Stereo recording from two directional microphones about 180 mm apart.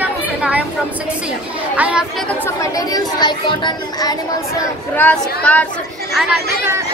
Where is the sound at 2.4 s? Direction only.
20° left (ahead or behind).